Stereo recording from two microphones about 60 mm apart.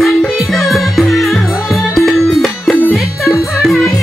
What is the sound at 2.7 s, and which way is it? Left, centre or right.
Music, left.